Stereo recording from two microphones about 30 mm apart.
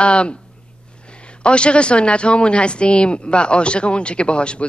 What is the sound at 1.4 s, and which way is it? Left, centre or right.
Speech, left.